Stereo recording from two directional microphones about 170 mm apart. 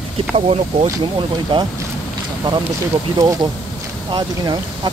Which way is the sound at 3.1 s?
25° right (ahead or behind).